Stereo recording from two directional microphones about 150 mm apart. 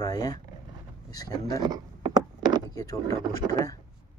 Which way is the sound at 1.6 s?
25° right (ahead or behind).